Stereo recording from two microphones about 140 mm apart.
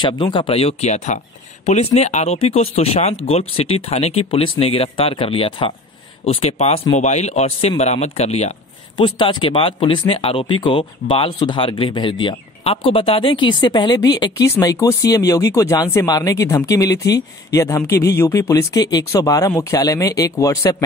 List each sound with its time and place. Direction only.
0.0 s speech: 35° left (ahead or behind); by 8.5 s 50° left (ahead or behind)
8.9 s speech: 35° left (ahead or behind)